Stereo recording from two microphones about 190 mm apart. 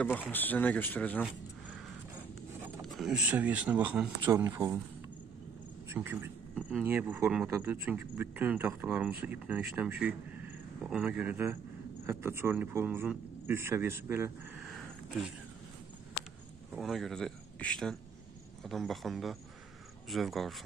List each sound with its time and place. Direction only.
0.3 s speech: 10° left (ahead or behind)
2.8 s speech: centre (ahead or behind)
4.3 s speech: 20° right (ahead or behind)
5.9 s speech: 10° right (ahead or behind)
14.7 s a sound: centre (ahead or behind)
16.7 s a man's voice: centre (ahead or behind)